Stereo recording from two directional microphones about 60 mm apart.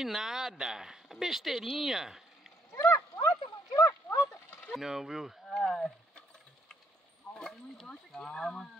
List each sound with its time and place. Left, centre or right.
0.0 s speech: centre
2.7 s a sound: left
4.7 s speech: centre
5.5 s speech: centre
7.3 s speech: centre